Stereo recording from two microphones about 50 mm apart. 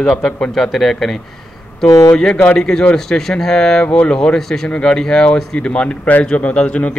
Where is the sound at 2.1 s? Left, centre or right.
Centre.